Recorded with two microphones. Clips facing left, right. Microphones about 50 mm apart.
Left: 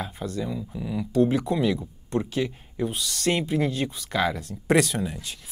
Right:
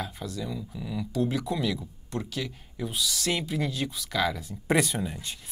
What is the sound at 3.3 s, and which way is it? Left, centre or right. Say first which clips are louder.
Speech: left 8 dB; left.